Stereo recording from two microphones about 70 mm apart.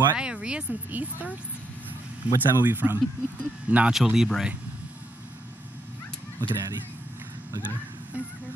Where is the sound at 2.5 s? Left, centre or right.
Right.